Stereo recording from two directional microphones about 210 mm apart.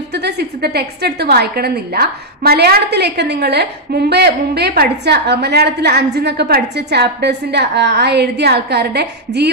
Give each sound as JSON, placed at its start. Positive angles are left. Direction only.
{"t": 0.1, "sound": "a woman's voice", "side_deg": -50}